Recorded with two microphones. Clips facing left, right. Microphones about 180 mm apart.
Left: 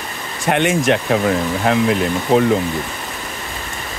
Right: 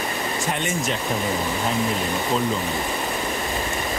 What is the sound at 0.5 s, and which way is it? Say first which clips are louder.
Speech: left 13 dB; 70° left (ahead or behind).